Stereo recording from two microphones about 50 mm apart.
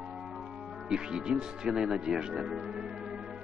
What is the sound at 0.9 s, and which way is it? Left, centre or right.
Speech, centre.